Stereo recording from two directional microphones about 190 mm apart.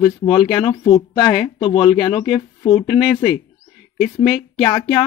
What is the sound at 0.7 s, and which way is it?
Speech, 20° left (ahead or behind).